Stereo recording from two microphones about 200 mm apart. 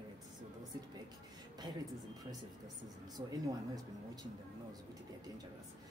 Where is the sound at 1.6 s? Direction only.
20° right (ahead or behind).